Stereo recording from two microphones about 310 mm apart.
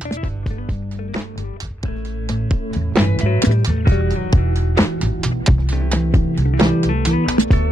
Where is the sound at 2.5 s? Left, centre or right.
Centre.